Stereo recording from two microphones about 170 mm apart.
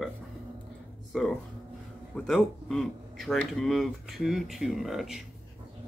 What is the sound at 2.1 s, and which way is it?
Speech, 5° left (ahead or behind).